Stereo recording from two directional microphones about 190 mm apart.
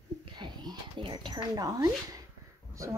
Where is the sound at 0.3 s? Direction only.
20° right (ahead or behind).